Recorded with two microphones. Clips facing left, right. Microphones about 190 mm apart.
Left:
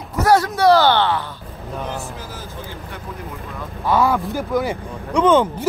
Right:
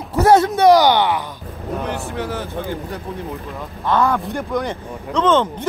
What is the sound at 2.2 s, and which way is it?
Speech, 65° right (ahead or behind).